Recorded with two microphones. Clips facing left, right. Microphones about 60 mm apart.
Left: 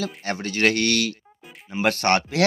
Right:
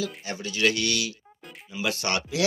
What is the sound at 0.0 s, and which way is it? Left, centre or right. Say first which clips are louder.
Speech: left 4 dB; left.